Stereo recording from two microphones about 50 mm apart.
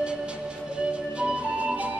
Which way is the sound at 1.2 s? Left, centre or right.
Right.